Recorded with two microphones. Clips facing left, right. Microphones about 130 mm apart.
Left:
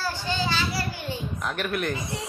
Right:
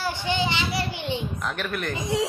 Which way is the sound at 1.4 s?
5° left (ahead or behind).